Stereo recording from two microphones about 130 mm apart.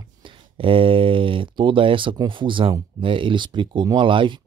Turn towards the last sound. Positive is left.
turn(degrees=-40)  # may be behind; listen again after turning